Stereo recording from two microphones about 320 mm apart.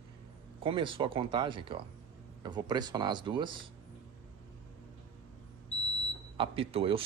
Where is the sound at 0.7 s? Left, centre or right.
Centre.